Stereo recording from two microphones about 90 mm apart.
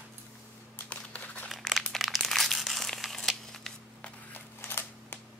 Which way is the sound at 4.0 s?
20° left (ahead or behind).